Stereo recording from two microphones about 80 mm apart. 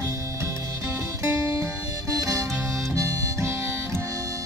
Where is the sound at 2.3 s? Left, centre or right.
Right.